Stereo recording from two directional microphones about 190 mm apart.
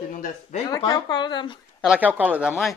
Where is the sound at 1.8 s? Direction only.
5° right (ahead or behind).